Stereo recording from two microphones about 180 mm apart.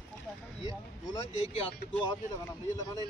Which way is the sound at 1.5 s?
30° left (ahead or behind).